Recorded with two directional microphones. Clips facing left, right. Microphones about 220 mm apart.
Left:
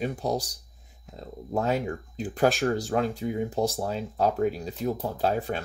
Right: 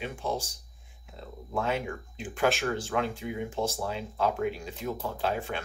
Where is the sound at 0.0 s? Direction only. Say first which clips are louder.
Left 5 dB; 40° left (ahead or behind).